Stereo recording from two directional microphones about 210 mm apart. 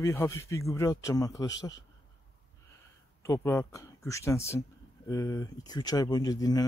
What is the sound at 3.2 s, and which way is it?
Speech, 15° left (ahead or behind).